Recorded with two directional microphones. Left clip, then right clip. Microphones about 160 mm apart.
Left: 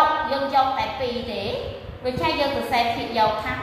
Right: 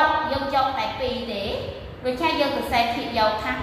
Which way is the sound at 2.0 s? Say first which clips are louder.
Even; 15° left (ahead or behind).